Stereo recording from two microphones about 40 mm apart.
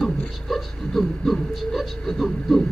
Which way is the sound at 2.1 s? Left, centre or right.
Centre.